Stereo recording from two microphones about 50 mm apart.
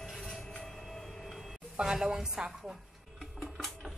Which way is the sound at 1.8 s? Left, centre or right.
Centre.